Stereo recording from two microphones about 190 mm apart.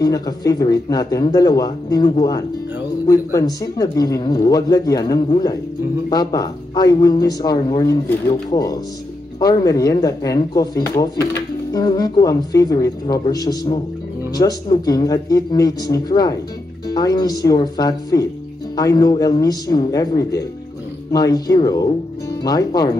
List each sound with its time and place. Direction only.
0.0 s speech: 20° left (ahead or behind)